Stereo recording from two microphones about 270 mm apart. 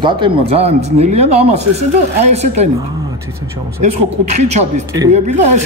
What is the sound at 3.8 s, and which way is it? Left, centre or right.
Speech, right.